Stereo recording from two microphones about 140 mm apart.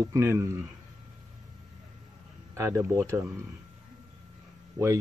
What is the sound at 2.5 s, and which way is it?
Speech, 20° right (ahead or behind).